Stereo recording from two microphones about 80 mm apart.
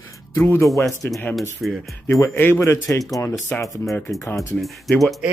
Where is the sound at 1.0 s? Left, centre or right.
Left.